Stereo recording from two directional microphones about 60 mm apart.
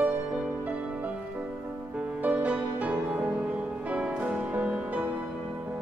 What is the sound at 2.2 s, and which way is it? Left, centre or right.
Music, right.